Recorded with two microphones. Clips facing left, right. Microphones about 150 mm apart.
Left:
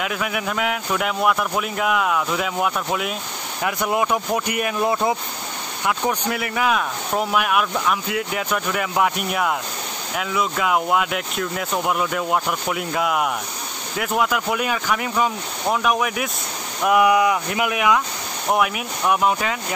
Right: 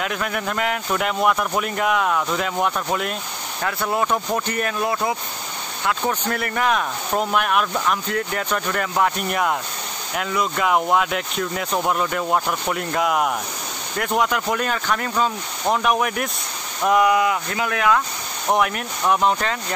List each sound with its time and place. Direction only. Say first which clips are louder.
0.0 s speech: even; 5° left (ahead or behind)
3.6 s speech: left 1 dB; 15° left (ahead or behind)
4.8 s speech: left 4 dB; 20° left (ahead or behind)
5.9 s speech: left 1 dB; 10° left (ahead or behind)
15.6 s speech: right 1 dB; centre (ahead or behind)